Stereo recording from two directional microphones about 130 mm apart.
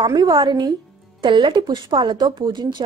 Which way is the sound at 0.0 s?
35° right (ahead or behind).